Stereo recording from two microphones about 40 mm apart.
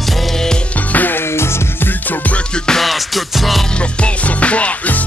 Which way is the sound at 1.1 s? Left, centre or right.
Left.